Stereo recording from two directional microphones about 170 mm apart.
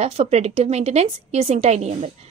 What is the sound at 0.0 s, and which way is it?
Speech, 40° right (ahead or behind).